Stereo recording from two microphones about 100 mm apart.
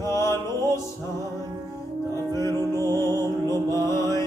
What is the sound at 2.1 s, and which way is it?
Music, 30° left (ahead or behind).